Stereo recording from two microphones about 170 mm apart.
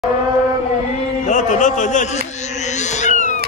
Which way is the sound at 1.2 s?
45° left (ahead or behind).